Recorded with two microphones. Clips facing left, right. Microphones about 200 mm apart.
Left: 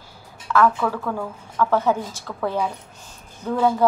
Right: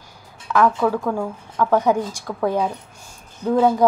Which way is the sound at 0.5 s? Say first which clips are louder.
Right 2 dB; 15° right (ahead or behind).